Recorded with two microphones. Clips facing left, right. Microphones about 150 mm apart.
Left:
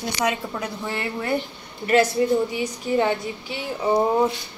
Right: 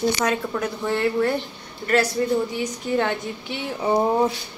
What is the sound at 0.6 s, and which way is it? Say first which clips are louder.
Music: right 6 dB; 5° left (ahead or behind).